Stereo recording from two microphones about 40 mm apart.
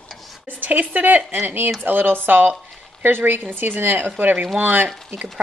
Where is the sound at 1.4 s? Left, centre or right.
Right.